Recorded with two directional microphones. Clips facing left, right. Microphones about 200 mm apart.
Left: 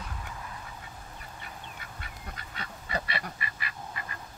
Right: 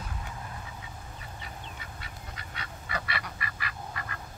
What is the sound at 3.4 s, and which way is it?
Duck, 20° left (ahead or behind).